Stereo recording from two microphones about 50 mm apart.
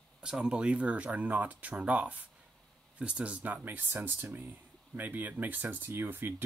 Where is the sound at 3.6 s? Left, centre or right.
Right.